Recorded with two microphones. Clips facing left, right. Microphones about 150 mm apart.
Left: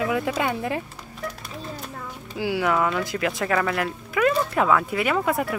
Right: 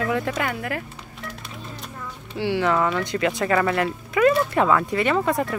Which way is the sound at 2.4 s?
5° left (ahead or behind).